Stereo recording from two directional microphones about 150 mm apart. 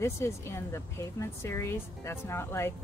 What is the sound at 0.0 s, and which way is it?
Speech, 20° left (ahead or behind).